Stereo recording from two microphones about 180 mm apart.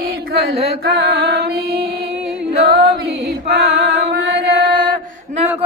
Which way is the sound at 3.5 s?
65° right (ahead or behind).